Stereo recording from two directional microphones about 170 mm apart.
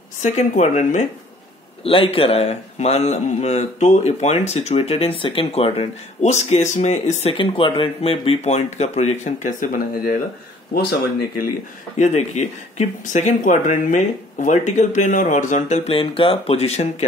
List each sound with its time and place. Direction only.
0.2 s speech: 45° left (ahead or behind)
1.8 s a man's voice: 35° left (ahead or behind); by 10.1 s 50° left (ahead or behind)
10.7 s speech: 65° left (ahead or behind)
12.0 s speech: 40° left (ahead or behind)